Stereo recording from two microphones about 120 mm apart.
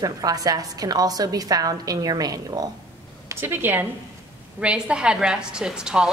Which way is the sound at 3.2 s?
20° right (ahead or behind).